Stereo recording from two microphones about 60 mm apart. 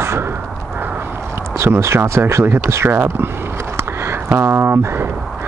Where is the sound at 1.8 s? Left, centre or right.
Right.